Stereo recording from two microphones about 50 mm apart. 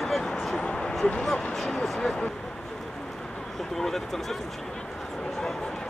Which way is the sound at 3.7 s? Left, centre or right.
Centre.